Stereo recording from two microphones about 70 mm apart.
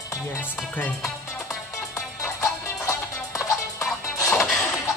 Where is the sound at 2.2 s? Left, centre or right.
Left.